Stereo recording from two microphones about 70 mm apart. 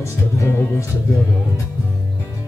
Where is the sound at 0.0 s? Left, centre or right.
Left.